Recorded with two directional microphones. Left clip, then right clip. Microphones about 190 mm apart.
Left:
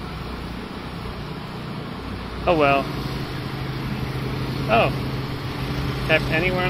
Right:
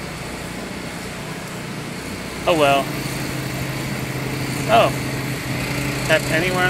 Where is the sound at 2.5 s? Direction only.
25° left (ahead or behind).